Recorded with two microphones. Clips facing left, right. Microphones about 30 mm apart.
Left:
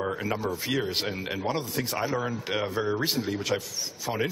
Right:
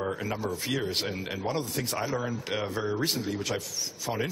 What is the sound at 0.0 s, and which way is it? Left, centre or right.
Speech, centre.